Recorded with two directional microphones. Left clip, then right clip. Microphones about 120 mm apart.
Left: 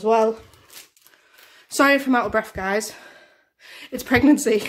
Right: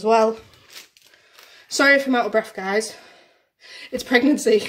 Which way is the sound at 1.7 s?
15° left (ahead or behind).